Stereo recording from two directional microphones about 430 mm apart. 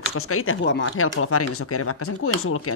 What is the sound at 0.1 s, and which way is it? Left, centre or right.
Speech, left.